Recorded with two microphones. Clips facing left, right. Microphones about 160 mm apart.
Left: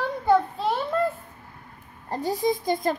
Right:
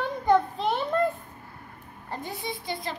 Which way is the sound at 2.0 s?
40° left (ahead or behind).